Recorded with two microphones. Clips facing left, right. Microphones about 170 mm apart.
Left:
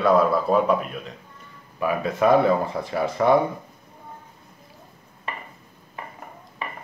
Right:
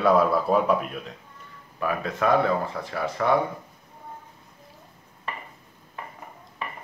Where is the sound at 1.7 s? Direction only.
10° left (ahead or behind).